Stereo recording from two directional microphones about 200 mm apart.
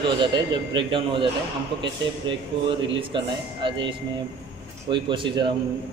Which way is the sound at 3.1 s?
25° right (ahead or behind).